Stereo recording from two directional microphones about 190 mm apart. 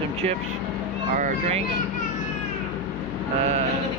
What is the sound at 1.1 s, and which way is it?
Speech, 40° right (ahead or behind).